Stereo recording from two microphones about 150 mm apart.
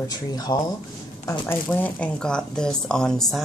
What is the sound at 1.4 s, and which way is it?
Speech, 10° left (ahead or behind).